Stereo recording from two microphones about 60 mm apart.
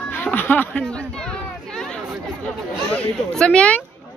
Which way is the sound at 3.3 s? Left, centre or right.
Centre.